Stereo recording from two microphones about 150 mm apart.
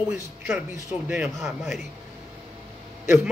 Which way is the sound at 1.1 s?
5° right (ahead or behind).